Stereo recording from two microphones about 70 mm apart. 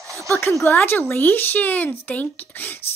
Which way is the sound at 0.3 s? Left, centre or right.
Left.